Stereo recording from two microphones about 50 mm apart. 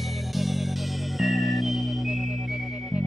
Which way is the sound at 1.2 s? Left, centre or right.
Centre.